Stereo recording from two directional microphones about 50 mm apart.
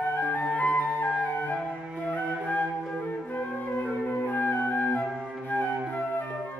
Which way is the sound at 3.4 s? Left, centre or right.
Left.